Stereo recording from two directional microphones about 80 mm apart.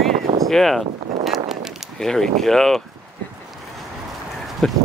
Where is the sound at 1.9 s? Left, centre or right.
Centre.